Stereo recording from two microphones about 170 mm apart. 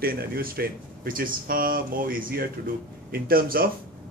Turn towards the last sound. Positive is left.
turn(degrees=-60)  # may be behind; listen again after turning